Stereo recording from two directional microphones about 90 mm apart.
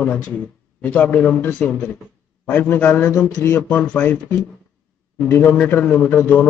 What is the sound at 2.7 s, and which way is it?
A man's voice, 20° left (ahead or behind).